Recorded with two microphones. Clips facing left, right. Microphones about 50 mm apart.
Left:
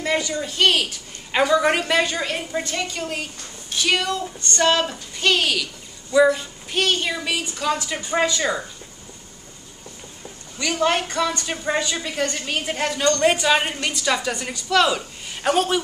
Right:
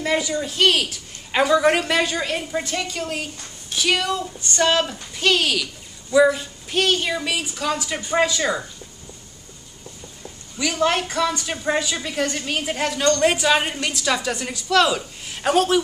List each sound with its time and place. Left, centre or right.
0.0 s a woman's voice: centre
10.6 s a woman's voice: centre